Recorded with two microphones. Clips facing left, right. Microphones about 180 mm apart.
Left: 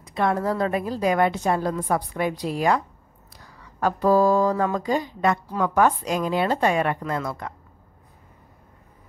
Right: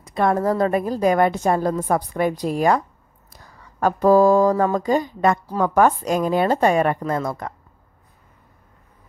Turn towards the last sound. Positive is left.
turn(degrees=-45)  # may be behind; listen again after turning